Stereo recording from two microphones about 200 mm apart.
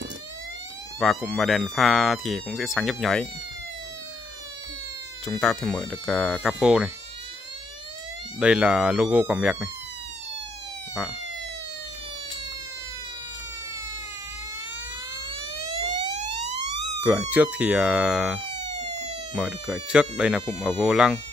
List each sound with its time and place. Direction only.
0.9 s speech: 5° left (ahead or behind)
5.2 s speech: 5° left (ahead or behind)
8.4 s speech: 5° right (ahead or behind)
15.8 s emergency vehicle: 35° right (ahead or behind)
17.0 s speech: 5° right (ahead or behind)
18.5 s emergency vehicle: 35° right (ahead or behind)
19.3 s speech: 5° right (ahead or behind)